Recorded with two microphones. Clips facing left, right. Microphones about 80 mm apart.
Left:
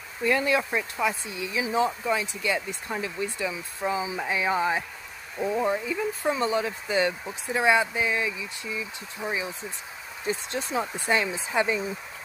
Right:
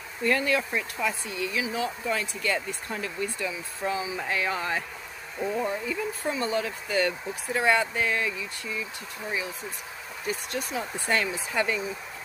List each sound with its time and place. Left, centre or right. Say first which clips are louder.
0.4 s speech: left 2 dB; left
2.0 s speech: left 2 dB; centre; by 11.1 s left
11.1 s speech: right 1 dB; centre